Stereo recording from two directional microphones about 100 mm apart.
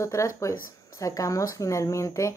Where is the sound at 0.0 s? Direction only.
30° left (ahead or behind).